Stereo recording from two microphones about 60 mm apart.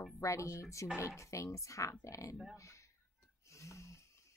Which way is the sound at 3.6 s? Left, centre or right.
Left.